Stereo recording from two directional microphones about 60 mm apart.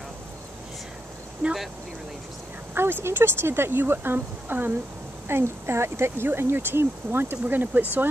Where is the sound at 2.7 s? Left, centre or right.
Right.